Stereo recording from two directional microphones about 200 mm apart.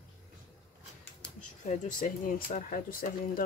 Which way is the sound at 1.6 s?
40° left (ahead or behind).